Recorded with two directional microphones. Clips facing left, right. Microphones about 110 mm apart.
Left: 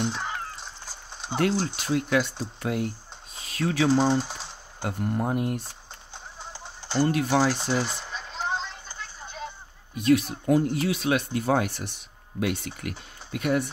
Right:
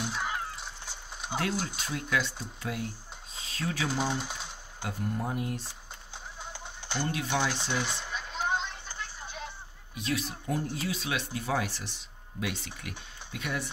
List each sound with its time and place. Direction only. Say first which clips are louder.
0.0 s fowl: left 3 dB; 5° right (ahead or behind)
1.1 s a sound: left 2 dB; 5° right (ahead or behind)
1.8 s speech: left 7 dB; 65° left (ahead or behind)
3.3 s a sound: left 8 dB; 65° left (ahead or behind)
3.9 s speech: left 9 dB; 35° left (ahead or behind)
4.7 s speech: left 6 dB; 55° left (ahead or behind)
7.1 s speech: left 6 dB; 50° left (ahead or behind)
7.9 s a sound: left 1 dB; centre (ahead or behind)
8.3 s music: left 1 dB; 5° right (ahead or behind)
9.9 s speech: left 11 dB; 55° left (ahead or behind)